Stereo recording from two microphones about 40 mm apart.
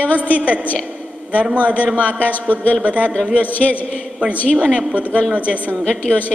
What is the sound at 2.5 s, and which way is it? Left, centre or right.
Speech, left.